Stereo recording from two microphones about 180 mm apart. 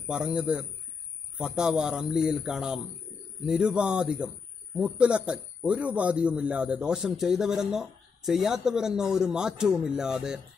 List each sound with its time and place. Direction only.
0.0 s a man's voice: 5° right (ahead or behind)